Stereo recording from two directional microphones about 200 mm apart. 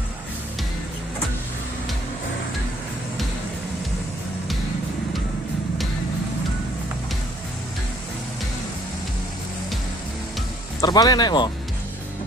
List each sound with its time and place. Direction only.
10.8 s speech: 20° left (ahead or behind)